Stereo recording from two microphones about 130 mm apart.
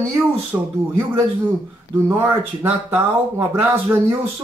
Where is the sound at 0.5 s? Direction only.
20° right (ahead or behind).